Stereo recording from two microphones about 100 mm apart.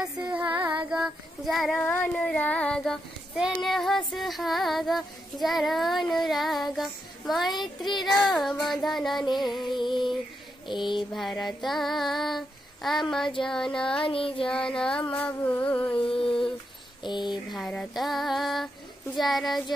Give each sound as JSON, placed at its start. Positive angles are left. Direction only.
{"t": 0.3, "sound": "music", "side_deg": -15}
{"t": 0.8, "sound": "child singing", "side_deg": -10}
{"t": 1.8, "sound": "female singing", "side_deg": 15}
{"t": 3.3, "sound": "child singing", "side_deg": 0}
{"t": 7.5, "sound": "speech", "side_deg": 45}
{"t": 8.0, "sound": "child singing", "side_deg": 0}
{"t": 9.8, "sound": "speech", "side_deg": 50}
{"t": 11.4, "sound": "child singing", "side_deg": 0}
{"t": 13.4, "sound": "female singing", "side_deg": 5}
{"t": 14.0, "sound": "child singing", "side_deg": 65}
{"t": 14.8, "sound": "female singing", "side_deg": 10}
{"t": 16.0, "sound": "child singing", "side_deg": 65}
{"t": 17.0, "sound": "speech", "side_deg": 50}
{"t": 17.5, "sound": "child singing", "side_deg": 5}